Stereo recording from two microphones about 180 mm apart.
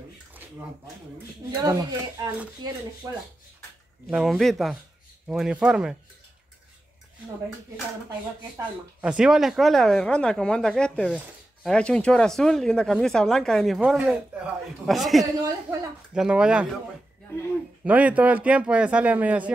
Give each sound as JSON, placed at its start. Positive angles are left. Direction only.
{"t": 1.5, "sound": "a man's voice", "side_deg": -20}
{"t": 4.1, "sound": "speech", "side_deg": 0}
{"t": 8.5, "sound": "speech", "side_deg": -5}
{"t": 17.8, "sound": "a man's voice", "side_deg": -10}